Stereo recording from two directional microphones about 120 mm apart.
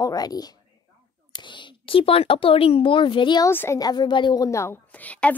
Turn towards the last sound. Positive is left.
turn(degrees=10)  # may be behind; listen again after turning